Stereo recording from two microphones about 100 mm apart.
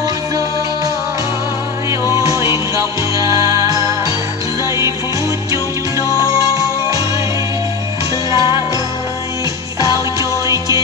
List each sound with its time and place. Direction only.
2.1 s music: 30° right (ahead or behind)
6.1 s music: 30° right (ahead or behind)
8.3 s music: 30° right (ahead or behind)
10.4 s music: 30° right (ahead or behind)